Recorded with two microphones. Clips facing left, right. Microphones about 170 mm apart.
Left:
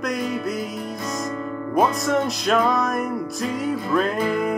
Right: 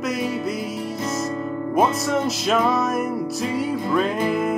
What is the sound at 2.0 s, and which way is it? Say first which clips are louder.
Music: even; centre (ahead or behind).